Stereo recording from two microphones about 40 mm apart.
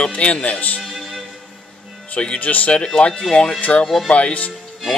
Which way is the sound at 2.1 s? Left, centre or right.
Left.